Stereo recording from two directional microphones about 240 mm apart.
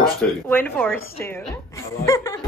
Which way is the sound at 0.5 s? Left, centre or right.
Centre.